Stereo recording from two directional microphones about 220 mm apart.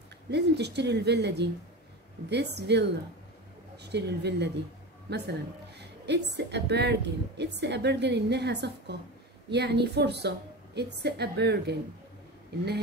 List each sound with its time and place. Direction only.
0.3 s a woman's voice: 50° right (ahead or behind)